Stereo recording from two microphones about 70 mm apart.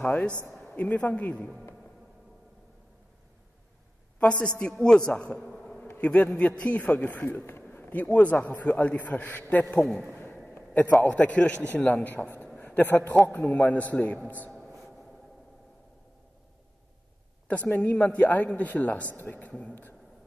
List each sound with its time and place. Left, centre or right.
0.0 s a man's voice: left
4.2 s a man's voice: centre
9.7 s a man's voice: centre
10.5 s a man's voice: left
12.5 s a sound: left
13.2 s a man's voice: left
14.6 s a sound: centre
17.5 s a man's voice: left
19.7 s a sound: left